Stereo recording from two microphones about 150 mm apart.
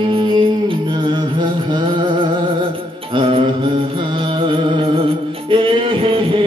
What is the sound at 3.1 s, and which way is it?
Mantra, 35° right (ahead or behind).